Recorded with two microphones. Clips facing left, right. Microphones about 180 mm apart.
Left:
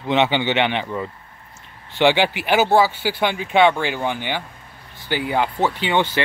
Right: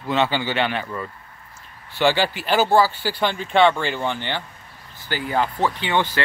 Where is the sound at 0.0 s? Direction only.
20° left (ahead or behind).